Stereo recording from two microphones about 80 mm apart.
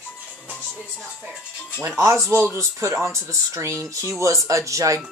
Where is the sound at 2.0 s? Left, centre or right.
Right.